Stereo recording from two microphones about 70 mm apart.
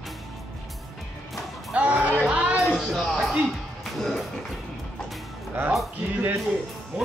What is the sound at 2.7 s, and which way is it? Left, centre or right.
Music, centre.